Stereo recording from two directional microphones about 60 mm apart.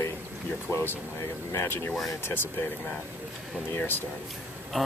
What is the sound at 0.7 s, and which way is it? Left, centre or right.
Speech, left.